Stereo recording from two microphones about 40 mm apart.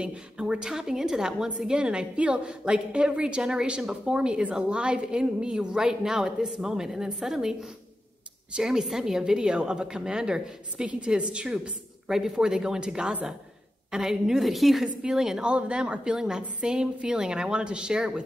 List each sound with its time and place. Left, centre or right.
0.0 s a woman's voice: right; by 7.5 s centre
8.5 s a woman's voice: centre
14.4 s a woman's voice: centre
15.0 s a woman's voice: centre
15.4 s a woman's voice: right